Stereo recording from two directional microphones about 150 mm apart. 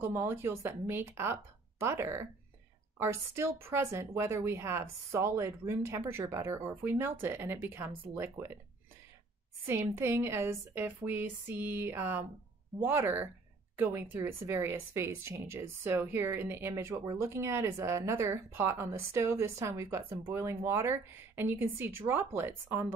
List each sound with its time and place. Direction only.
0.0 s a woman's voice: 15° right (ahead or behind)
9.7 s a woman's voice: 15° right (ahead or behind)